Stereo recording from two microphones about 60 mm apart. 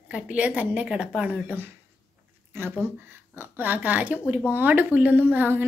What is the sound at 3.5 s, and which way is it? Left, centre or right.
A woman's voice, right.